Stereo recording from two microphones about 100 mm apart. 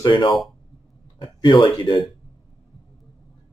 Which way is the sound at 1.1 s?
60° left (ahead or behind).